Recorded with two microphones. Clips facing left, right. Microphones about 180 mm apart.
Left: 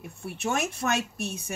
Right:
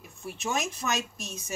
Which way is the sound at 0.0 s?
60° left (ahead or behind).